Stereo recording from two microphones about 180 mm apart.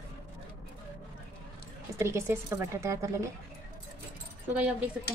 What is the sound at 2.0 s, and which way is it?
A woman's voice, 15° right (ahead or behind).